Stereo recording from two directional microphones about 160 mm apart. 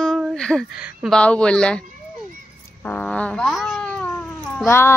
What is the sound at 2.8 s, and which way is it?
Babbling, 10° left (ahead or behind).